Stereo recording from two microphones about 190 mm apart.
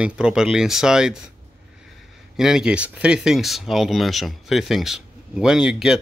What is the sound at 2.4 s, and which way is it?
Speech, 5° right (ahead or behind).